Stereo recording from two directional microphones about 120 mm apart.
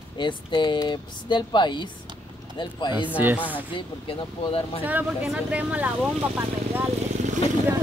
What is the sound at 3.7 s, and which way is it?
Speech, 50° left (ahead or behind).